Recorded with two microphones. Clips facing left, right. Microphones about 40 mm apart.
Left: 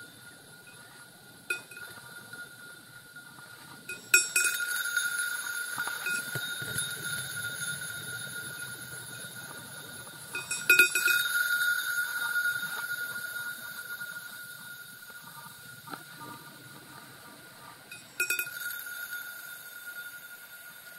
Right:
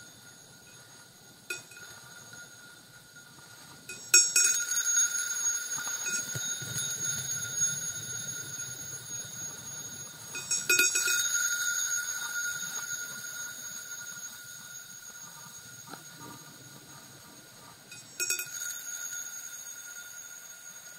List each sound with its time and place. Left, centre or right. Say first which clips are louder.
3.8 s music: left 3 dB; centre
15.9 s train: left 4 dB; centre
18.1 s bicycle bell: left 6 dB; centre